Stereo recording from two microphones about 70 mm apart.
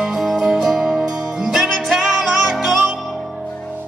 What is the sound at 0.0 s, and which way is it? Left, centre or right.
Music, centre.